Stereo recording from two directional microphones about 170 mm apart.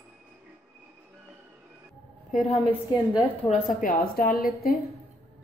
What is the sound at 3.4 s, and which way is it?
Speech, 55° left (ahead or behind).